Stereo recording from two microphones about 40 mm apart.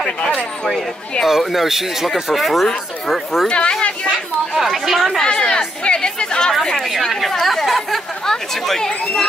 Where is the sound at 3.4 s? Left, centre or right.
Left.